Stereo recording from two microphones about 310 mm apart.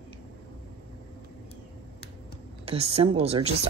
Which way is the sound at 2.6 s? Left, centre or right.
Centre.